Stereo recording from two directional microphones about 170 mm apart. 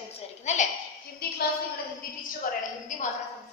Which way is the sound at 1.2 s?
65° left (ahead or behind).